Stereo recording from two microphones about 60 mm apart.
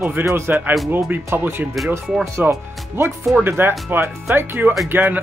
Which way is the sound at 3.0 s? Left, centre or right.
Right.